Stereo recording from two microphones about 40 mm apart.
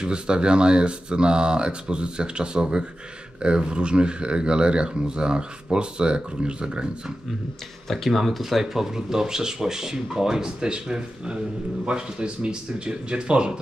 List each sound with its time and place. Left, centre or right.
0.0 s speech: right
7.9 s speech: centre; by 13.6 s right